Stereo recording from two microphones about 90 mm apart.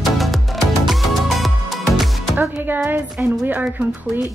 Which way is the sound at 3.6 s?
5° right (ahead or behind).